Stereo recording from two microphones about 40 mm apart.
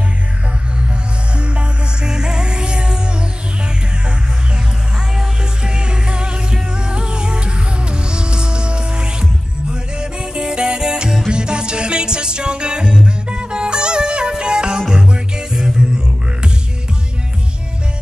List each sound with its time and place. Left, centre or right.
1.4 s music: right
5.1 s music: centre
15.8 s a sound: right